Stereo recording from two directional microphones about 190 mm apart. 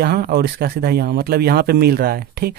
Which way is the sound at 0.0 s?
55° right (ahead or behind).